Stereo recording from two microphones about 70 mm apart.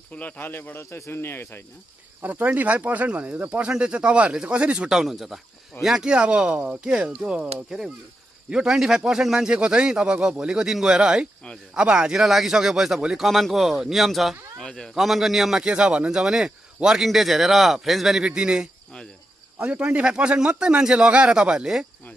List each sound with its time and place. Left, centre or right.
0.1 s a man's voice: left
0.8 s speech: left
2.2 s speech: right
4.8 s speech: centre
8.5 s speech: centre
14.6 s a man's voice: centre
15.0 s speech: centre